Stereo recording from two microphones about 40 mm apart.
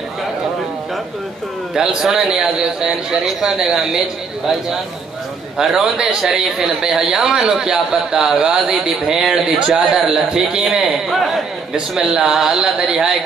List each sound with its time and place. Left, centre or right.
1.8 s a man's voice: centre
5.6 s a man's voice: centre
12.7 s a man's voice: centre